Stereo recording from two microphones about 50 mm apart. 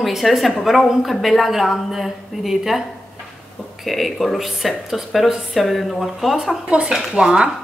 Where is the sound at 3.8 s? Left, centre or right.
Centre.